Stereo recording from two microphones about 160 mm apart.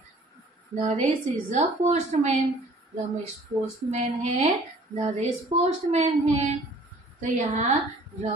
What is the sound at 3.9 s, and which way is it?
A woman's voice, 45° right (ahead or behind).